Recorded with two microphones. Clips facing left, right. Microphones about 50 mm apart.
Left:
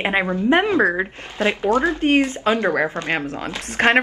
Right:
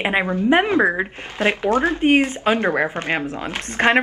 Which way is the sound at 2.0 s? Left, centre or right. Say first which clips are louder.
Right 1 dB; right.